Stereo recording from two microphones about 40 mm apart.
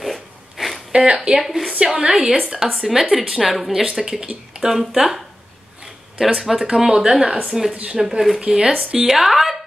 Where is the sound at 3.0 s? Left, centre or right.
Centre; by 4.7 s right.